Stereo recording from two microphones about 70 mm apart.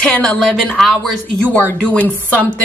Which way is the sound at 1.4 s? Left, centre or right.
Centre.